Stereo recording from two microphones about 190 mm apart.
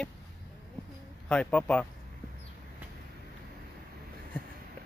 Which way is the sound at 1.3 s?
5° left (ahead or behind).